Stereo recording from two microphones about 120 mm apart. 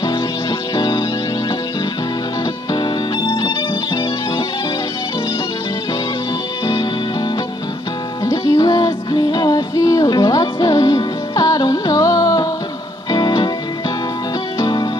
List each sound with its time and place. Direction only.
0.7 s music: 30° left (ahead or behind)
2.7 s music: 30° left (ahead or behind)
6.6 s music: 30° left (ahead or behind)
8.3 s music: 30° left (ahead or behind)
14.6 s music: 35° left (ahead or behind)